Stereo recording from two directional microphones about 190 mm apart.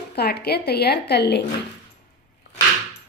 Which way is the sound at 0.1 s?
55° left (ahead or behind).